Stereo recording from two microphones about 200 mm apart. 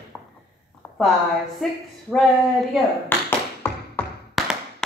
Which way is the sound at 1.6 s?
Centre (ahead or behind).